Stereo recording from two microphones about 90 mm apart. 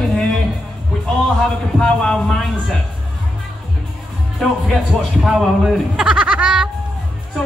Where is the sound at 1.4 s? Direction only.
5° left (ahead or behind).